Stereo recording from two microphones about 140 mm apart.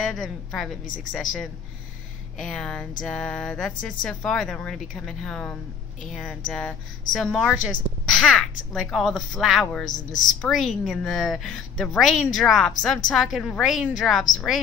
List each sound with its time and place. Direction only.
0.0 s a woman's voice: centre (ahead or behind)
2.3 s a woman's voice: 5° left (ahead or behind)
3.1 s music: 5° left (ahead or behind)
4.0 s a woman's voice: 5° left (ahead or behind)
9.8 s a woman's voice: 65° left (ahead or behind)
10.4 s a woman's voice: centre (ahead or behind)